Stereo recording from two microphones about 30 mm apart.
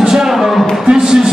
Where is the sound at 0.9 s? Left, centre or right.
Right.